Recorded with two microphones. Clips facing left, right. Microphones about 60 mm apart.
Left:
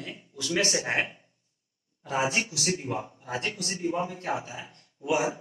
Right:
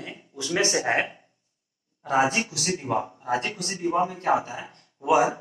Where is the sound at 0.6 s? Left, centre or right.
Right.